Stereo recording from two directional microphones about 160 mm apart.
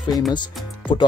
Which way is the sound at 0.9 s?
30° left (ahead or behind).